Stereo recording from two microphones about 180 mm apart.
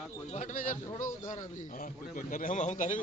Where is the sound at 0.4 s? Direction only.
45° left (ahead or behind).